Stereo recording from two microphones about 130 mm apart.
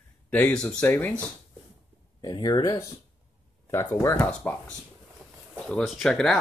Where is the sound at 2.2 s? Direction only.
35° left (ahead or behind).